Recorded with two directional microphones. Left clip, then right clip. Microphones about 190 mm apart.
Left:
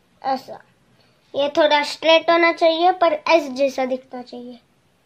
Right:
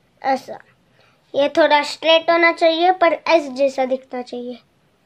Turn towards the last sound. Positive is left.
turn(degrees=-30)  # may be behind; listen again after turning